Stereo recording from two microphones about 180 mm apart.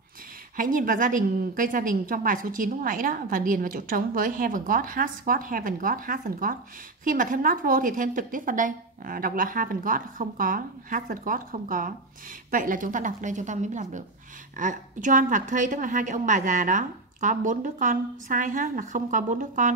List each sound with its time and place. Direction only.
0.6 s a woman's voice: 50° right (ahead or behind)